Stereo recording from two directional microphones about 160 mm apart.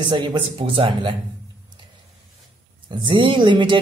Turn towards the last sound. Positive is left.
turn(degrees=-30)  # may be behind; listen again after turning